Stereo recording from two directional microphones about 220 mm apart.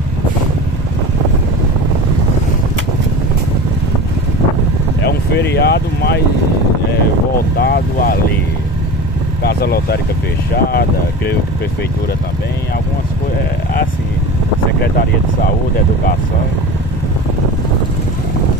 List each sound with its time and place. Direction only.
5.0 s vehicle: 50° left (ahead or behind)
7.5 s speech: 45° left (ahead or behind)
9.4 s speech: 45° left (ahead or behind)